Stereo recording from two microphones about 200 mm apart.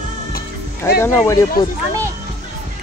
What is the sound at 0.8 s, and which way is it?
Speech, 10° left (ahead or behind).